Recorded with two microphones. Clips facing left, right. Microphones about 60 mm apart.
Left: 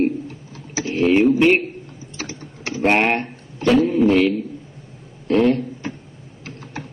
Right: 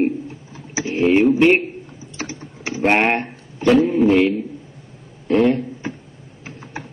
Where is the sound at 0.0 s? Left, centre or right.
Centre.